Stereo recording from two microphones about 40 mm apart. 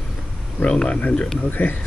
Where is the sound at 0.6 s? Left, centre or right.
Left.